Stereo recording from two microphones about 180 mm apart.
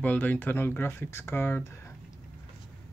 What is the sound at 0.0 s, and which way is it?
Speech, 10° left (ahead or behind).